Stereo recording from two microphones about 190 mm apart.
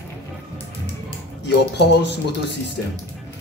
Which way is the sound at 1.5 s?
60° left (ahead or behind).